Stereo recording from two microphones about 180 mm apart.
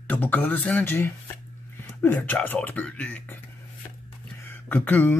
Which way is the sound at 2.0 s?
10° left (ahead or behind).